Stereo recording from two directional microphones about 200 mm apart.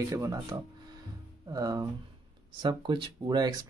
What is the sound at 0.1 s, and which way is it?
Speech, 15° right (ahead or behind).